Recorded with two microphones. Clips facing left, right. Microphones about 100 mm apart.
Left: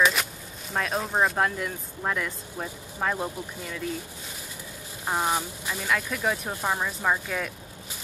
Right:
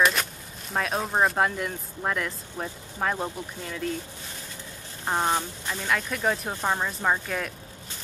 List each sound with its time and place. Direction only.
0.0 s a sound: 5° left (ahead or behind)
0.7 s speech: centre (ahead or behind)
5.0 s speech: 10° left (ahead or behind)